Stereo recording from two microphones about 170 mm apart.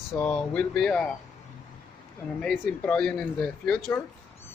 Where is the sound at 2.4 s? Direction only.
Centre (ahead or behind).